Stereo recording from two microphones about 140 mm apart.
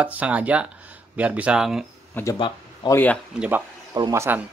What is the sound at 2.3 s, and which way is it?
Speech, 35° left (ahead or behind).